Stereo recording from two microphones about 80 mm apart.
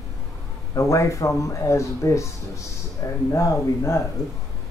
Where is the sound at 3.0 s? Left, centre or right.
Left.